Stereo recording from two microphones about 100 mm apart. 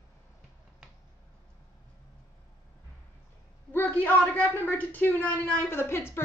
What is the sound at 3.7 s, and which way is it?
A man's voice, 20° left (ahead or behind).